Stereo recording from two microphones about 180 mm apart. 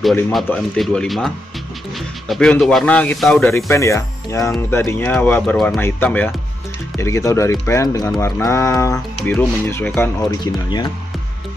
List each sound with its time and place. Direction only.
0.5 s speech: 5° left (ahead or behind)
3.4 s speech: 15° left (ahead or behind)
10.4 s speech: 25° left (ahead or behind)